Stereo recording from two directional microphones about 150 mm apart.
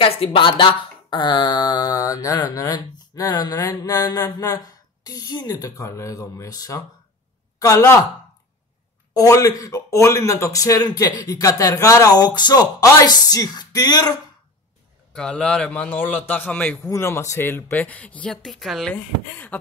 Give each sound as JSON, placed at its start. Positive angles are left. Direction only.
{"t": 0.0, "sound": "a man's voice", "side_deg": 40}
{"t": 9.1, "sound": "speech", "side_deg": 25}
{"t": 15.1, "sound": "speech", "side_deg": 5}
{"t": 16.9, "sound": "speech", "side_deg": 20}